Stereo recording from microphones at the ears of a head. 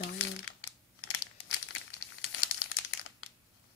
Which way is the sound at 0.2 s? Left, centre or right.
Left.